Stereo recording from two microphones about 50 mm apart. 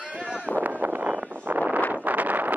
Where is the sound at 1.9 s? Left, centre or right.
Right.